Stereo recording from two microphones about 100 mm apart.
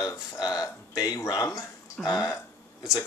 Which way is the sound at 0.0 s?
35° left (ahead or behind).